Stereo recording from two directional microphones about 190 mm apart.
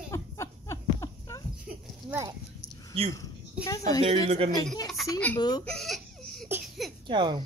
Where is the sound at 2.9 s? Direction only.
30° right (ahead or behind).